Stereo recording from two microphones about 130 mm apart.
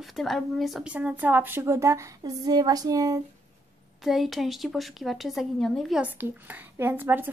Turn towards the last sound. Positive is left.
turn(degrees=-15)  # may be behind; listen again after turning